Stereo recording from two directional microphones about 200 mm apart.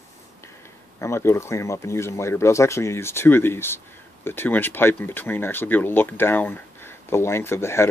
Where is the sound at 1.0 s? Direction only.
15° left (ahead or behind).